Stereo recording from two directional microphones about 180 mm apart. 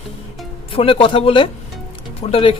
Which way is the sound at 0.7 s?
30° left (ahead or behind).